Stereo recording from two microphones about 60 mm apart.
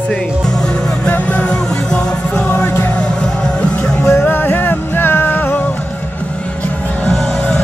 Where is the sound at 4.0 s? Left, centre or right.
Left.